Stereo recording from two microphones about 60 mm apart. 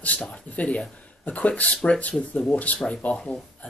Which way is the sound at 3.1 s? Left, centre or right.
Centre.